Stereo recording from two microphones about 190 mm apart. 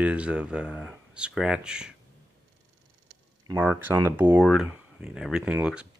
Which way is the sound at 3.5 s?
10° right (ahead or behind).